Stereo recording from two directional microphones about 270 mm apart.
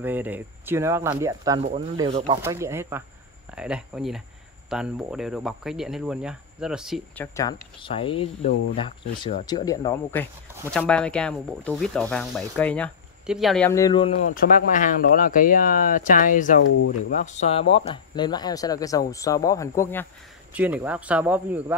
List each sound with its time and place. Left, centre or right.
0.0 s speech: centre
7.8 s speech: centre
20.5 s speech: centre